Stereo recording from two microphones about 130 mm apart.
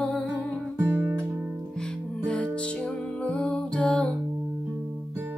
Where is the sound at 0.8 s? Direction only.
20° right (ahead or behind).